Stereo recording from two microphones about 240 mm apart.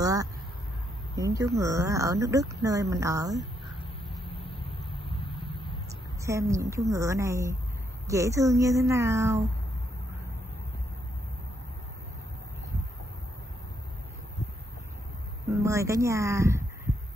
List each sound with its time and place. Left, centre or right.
0.0 s a sound: centre
1.1 s speech: centre
4.3 s vehicle: left
4.9 s a sound: left
6.2 s speech: centre
15.4 s speech: centre